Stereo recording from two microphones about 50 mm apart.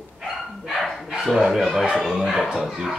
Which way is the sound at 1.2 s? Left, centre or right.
Centre.